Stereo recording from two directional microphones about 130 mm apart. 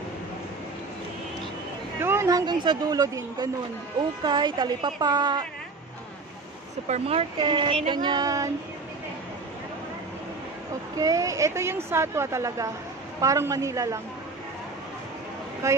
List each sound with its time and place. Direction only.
2.0 s speech: 20° right (ahead or behind); by 5.4 s 35° right (ahead or behind)
6.9 s speech: 50° right (ahead or behind); by 8.5 s 30° right (ahead or behind)
11.0 s a woman's voice: 25° right (ahead or behind)
15.6 s a woman's voice: 20° right (ahead or behind)